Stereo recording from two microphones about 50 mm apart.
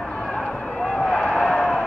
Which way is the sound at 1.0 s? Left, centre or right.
Left.